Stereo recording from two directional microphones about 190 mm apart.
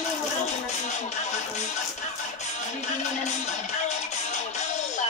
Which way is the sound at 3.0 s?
40° left (ahead or behind).